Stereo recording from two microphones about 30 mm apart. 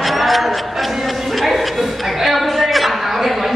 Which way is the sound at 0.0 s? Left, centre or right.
Centre.